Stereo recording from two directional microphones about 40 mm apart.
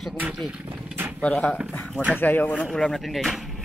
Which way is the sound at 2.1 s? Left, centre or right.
Left.